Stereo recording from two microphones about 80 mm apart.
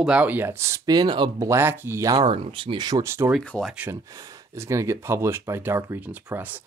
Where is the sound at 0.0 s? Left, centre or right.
Centre; by 0.8 s right.